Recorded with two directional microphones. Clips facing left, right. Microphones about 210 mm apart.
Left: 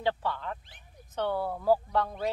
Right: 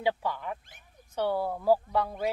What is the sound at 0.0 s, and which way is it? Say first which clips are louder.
Speech: right 1 dB; 10° right (ahead or behind).